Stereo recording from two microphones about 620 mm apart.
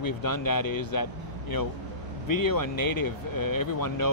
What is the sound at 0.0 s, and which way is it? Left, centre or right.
Speech, left.